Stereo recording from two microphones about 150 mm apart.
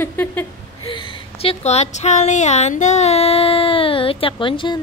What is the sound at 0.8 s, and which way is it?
Speech, 30° left (ahead or behind).